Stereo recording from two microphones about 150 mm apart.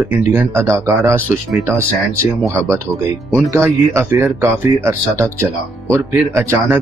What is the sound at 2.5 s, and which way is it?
Speech, 20° right (ahead or behind).